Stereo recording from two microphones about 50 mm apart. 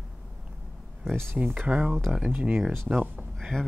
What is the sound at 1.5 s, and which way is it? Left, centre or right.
Speech, right.